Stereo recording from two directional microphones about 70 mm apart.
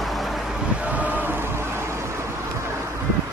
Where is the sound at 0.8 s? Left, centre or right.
Right.